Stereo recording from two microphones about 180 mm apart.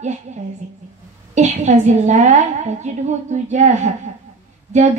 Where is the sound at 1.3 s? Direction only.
40° right (ahead or behind).